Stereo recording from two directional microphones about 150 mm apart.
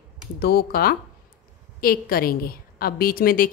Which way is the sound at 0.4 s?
90° left.